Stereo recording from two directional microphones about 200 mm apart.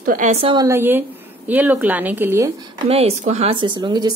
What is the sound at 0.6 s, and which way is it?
Speech, 10° right (ahead or behind).